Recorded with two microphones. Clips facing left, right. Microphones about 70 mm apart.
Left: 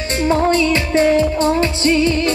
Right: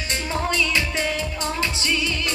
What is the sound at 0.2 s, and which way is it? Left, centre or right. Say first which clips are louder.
Music: left 11 dB; left.